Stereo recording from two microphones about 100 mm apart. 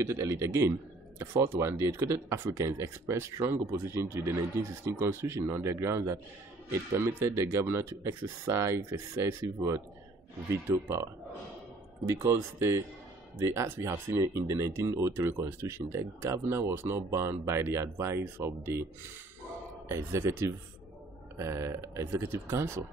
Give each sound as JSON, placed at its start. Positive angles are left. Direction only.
{"t": 0.0, "sound": "speech", "side_deg": -25}
{"t": 12.1, "sound": "speech", "side_deg": -25}
{"t": 19.9, "sound": "speech", "side_deg": -30}